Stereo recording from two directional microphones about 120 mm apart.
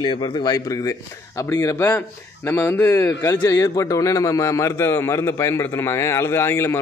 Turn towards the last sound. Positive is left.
turn(degrees=20)  # may be behind; listen again after turning